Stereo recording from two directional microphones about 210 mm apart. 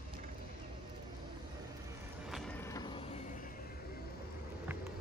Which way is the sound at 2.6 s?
15° left (ahead or behind).